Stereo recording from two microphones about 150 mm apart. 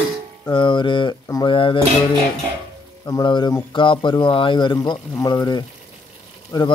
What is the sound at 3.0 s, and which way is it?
A man's voice, 25° left (ahead or behind).